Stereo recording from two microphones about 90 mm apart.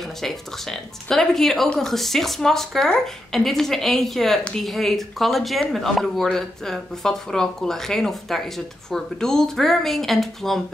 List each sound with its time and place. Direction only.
0.2 s a woman's voice: 5° left (ahead or behind)